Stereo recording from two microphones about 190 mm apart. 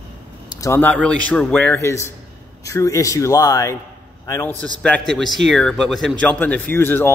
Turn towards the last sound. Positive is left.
turn(degrees=10)  # may be behind; listen again after turning